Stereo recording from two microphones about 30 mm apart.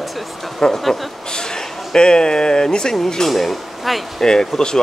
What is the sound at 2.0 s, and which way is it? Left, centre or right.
Speech, left.